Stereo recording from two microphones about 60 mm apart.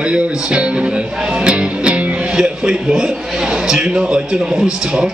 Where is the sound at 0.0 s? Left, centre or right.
Centre.